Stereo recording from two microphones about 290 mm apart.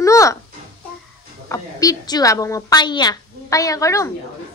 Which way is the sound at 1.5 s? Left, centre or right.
Centre.